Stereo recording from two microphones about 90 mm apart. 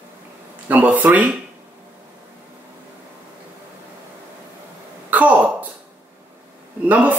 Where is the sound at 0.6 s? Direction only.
15° right (ahead or behind).